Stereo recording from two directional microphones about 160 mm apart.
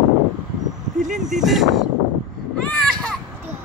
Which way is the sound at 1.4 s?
Centre (ahead or behind).